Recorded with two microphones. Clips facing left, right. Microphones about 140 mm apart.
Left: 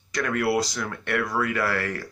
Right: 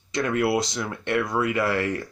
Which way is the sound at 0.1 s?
25° right (ahead or behind).